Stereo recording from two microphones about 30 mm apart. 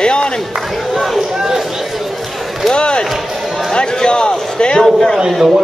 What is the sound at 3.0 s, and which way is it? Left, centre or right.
Music, centre.